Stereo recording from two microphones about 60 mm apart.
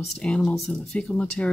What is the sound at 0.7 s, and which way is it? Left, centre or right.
Speech, centre.